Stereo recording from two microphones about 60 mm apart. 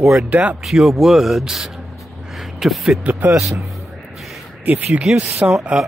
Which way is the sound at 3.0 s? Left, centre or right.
Right.